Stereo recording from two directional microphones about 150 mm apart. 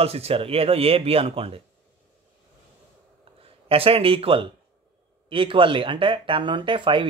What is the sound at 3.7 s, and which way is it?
Speech, 40° right (ahead or behind).